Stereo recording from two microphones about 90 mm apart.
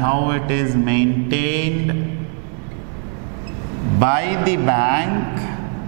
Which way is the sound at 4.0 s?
15° right (ahead or behind).